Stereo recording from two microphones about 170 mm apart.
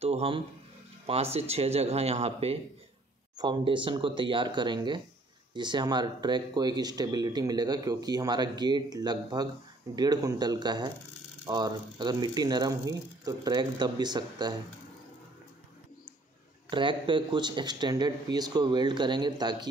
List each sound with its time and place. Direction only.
0.0 s speech: 35° right (ahead or behind)
16.7 s speech: 30° right (ahead or behind)